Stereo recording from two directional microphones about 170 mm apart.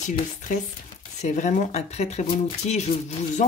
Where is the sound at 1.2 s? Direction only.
45° left (ahead or behind).